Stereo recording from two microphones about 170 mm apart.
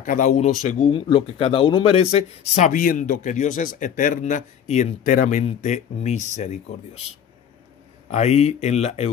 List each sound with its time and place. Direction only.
0.0 s a man's voice: 50° left (ahead or behind)
8.1 s speech: 40° left (ahead or behind)